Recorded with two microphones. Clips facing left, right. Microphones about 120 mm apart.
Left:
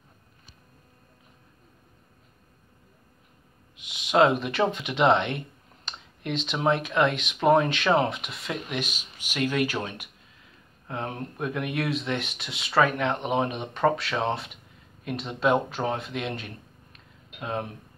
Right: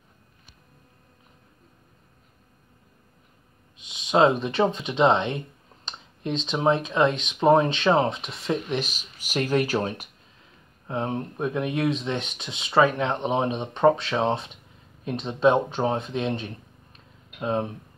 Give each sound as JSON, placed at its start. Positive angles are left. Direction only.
{"t": 3.9, "sound": "a sound", "side_deg": -20}
{"t": 4.4, "sound": "speech", "side_deg": -20}
{"t": 10.9, "sound": "speech", "side_deg": -20}